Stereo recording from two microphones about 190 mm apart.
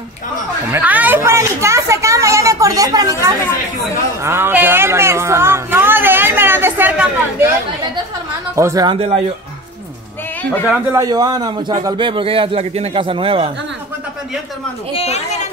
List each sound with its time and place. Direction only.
0.7 s speech: 10° right (ahead or behind)
8.5 s speech: 15° right (ahead or behind)
8.9 s speech: 30° right (ahead or behind)
10.9 s a man's voice: 20° right (ahead or behind)
15.0 s a sound: 35° left (ahead or behind)